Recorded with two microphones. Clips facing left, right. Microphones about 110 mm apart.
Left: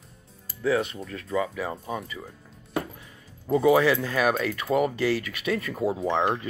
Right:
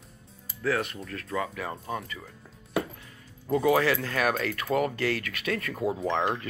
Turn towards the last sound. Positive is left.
turn(degrees=15)  # may be behind; listen again after turning